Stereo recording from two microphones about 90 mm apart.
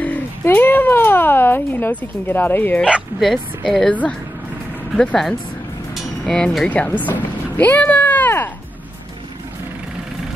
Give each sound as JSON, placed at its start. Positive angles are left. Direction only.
{"t": 0.0, "sound": "speech", "side_deg": 20}
{"t": 2.8, "sound": "speech", "side_deg": -10}
{"t": 3.3, "sound": "speech", "side_deg": 5}
{"t": 4.9, "sound": "speech", "side_deg": 5}